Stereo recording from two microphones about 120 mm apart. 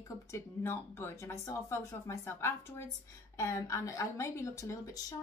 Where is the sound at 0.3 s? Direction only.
20° left (ahead or behind).